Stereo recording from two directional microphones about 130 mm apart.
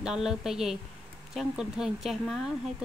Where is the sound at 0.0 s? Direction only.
5° right (ahead or behind).